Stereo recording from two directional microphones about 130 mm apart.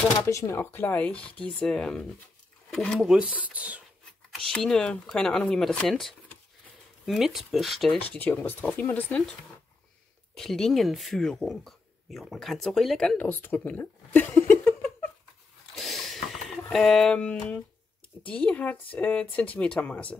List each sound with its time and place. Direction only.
0.2 s speech: 20° left (ahead or behind); by 3.8 s 10° right (ahead or behind)
4.5 s speech: 5° left (ahead or behind)
8.0 s speech: 10° left (ahead or behind)
10.3 s speech: 5° left (ahead or behind)
13.3 s speech: 15° left (ahead or behind)
15.7 s mechanisms: centre (ahead or behind)
16.6 s speech: 5° left (ahead or behind)